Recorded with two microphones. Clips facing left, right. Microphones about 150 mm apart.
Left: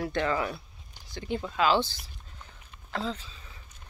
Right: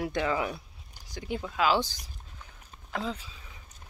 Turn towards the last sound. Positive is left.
turn(degrees=-10)  # may be behind; listen again after turning